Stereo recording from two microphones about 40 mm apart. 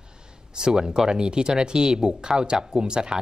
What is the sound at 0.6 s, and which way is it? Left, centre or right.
Speech, centre.